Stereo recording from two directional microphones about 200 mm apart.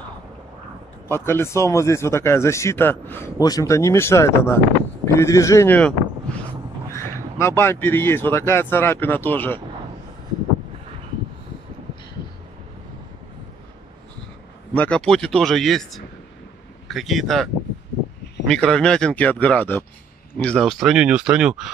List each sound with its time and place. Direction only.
1.0 s speech: 10° left (ahead or behind)
7.3 s speech: 10° left (ahead or behind)
14.7 s speech: 5° left (ahead or behind)
18.5 s speech: 5° left (ahead or behind)